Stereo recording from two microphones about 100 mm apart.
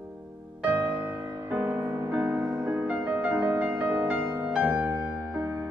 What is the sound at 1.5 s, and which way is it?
Music, 10° right (ahead or behind).